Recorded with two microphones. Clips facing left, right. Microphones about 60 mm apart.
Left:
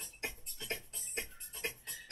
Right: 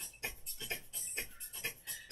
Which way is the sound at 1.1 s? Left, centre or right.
Left.